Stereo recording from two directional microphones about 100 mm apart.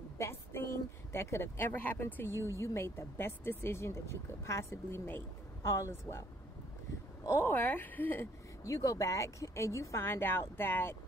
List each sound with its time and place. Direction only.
0.2 s a sound: 25° left (ahead or behind)
1.1 s speech: 25° left (ahead or behind)
7.2 s speech: 25° left (ahead or behind)
8.6 s speech: 35° left (ahead or behind)